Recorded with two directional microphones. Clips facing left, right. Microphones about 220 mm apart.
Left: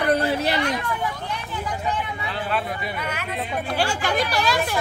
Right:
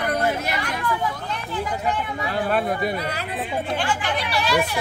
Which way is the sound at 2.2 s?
50° right (ahead or behind).